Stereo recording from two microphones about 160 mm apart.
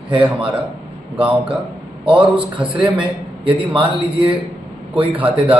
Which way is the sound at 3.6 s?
30° right (ahead or behind).